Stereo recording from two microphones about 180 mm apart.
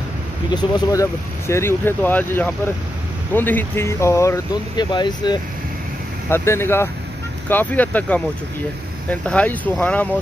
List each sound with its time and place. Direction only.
0.5 s speech: 25° left (ahead or behind)
1.5 s speech: 15° left (ahead or behind)
6.2 s speech: 15° left (ahead or behind)